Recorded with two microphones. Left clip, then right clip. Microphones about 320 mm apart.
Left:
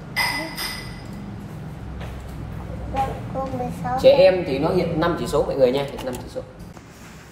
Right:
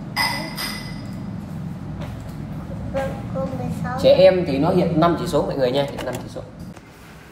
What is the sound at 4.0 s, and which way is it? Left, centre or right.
A man's voice, centre.